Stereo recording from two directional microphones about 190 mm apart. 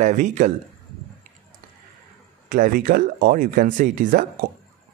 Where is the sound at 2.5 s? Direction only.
45° right (ahead or behind).